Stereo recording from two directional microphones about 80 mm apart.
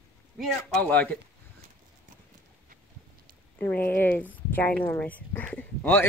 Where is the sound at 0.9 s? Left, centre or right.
Centre.